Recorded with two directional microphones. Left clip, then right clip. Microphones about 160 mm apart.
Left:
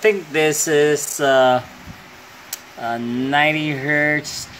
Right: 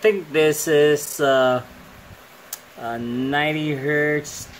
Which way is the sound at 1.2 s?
15° left (ahead or behind).